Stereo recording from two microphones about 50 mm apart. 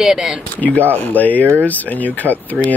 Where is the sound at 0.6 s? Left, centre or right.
Left.